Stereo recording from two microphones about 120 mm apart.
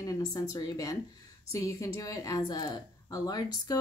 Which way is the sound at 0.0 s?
30° left (ahead or behind).